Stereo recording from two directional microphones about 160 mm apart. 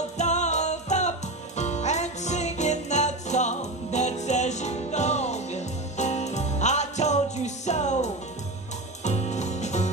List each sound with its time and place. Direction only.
0.2 s music: 45° left (ahead or behind)